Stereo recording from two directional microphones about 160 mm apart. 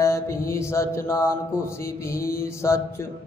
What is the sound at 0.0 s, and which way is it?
Mantra, 20° left (ahead or behind).